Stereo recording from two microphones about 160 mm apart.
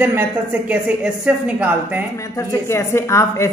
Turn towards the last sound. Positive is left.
turn(degrees=15)  # may be behind; listen again after turning